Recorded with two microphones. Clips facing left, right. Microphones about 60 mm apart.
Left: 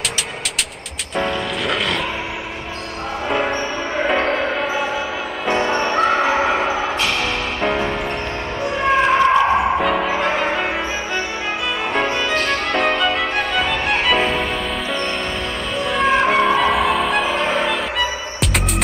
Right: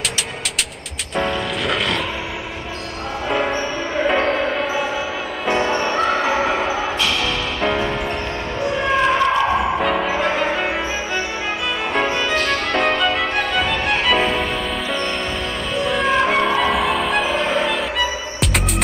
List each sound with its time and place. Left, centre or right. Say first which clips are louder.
1.1 s music: even; centre
3.3 s basketball bounce: even; centre
5.5 s music: even; centre
8.8 s a sound: left 3 dB; centre
9.8 s music: left 1 dB; centre
11.9 s music: even; centre
15.8 s music: left 1 dB; centre